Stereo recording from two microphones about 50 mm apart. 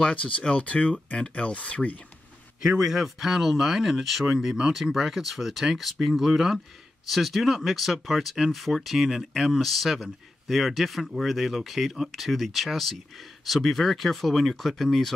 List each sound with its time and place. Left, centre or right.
0.0 s speech: left
2.6 s speech: centre